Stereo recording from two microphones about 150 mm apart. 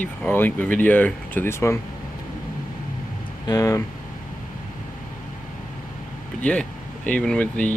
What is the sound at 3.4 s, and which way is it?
Speech, 20° left (ahead or behind).